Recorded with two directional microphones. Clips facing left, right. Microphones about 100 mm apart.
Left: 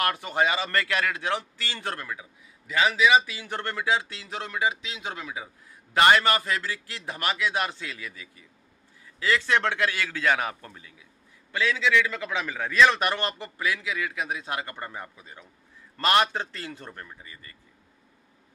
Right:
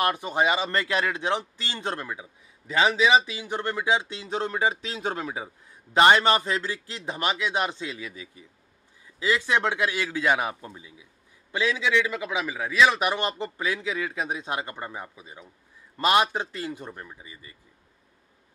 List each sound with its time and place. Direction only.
0.0 s speech: 20° right (ahead or behind)
3.2 s speech: 20° right (ahead or behind); by 5.5 s 35° right (ahead or behind)
5.9 s a man's voice: 25° right (ahead or behind)